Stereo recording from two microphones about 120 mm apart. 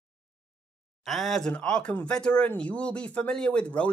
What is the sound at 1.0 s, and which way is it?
Speech, centre (ahead or behind).